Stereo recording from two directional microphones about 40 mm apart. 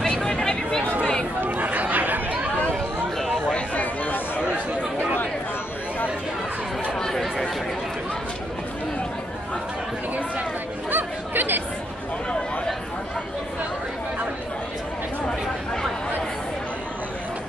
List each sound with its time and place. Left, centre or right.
0.0 s a sound: centre
1.4 s chatter: right
3.4 s a sound: left
3.8 s chatter: left
7.0 s chatter: centre
10.9 s chatter: right
15.2 s chatter: centre